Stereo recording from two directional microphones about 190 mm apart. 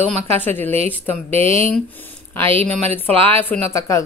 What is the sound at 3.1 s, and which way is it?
Speech, 30° right (ahead or behind).